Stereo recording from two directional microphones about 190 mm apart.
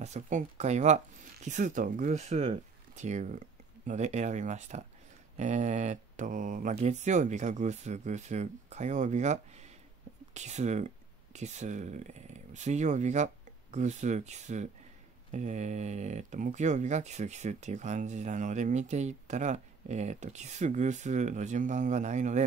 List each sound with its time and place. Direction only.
0.0 s speech: 40° right (ahead or behind)